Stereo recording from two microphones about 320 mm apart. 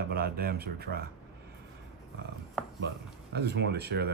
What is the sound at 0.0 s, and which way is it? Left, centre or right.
Speech, right.